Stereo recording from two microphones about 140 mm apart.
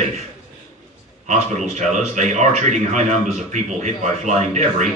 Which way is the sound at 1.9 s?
60° right (ahead or behind).